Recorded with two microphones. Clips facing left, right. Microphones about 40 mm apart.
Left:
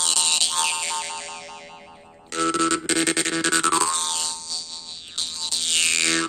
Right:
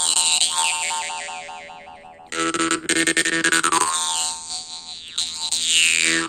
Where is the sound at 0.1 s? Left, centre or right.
Right.